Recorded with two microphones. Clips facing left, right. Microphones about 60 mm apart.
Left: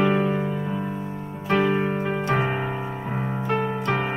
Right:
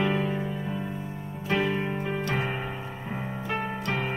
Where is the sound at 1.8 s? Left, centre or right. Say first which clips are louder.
Left 5 dB; left.